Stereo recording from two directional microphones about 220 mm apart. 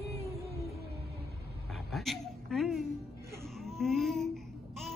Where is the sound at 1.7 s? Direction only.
Centre (ahead or behind).